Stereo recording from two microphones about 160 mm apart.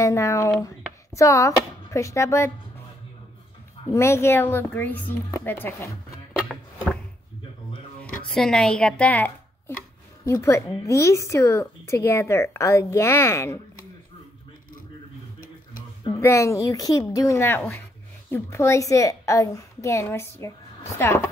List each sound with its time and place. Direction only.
0.0 s a sound: 20° left (ahead or behind)
0.6 s speech: 20° left (ahead or behind)
3.9 s speech: 15° left (ahead or behind)
8.4 s speech: 5° left (ahead or behind)
16.2 s a woman's voice: 15° left (ahead or behind)